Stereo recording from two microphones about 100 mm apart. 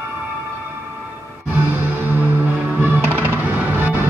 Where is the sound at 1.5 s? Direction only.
20° right (ahead or behind).